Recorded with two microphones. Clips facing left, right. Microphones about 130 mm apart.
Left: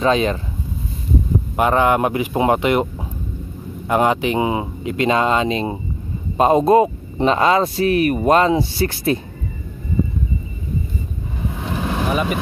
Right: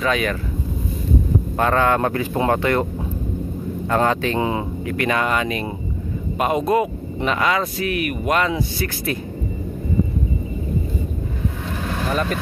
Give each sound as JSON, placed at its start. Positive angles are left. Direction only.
{"t": 0.0, "sound": "speech", "side_deg": 25}
{"t": 1.6, "sound": "speech", "side_deg": 15}
{"t": 3.9, "sound": "speech", "side_deg": 15}
{"t": 11.6, "sound": "vehicle", "side_deg": 15}